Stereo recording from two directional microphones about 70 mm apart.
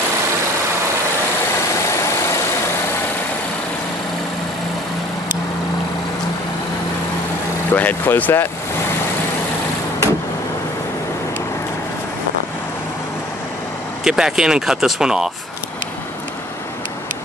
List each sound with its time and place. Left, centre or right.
7.7 s speech: left
14.0 s speech: centre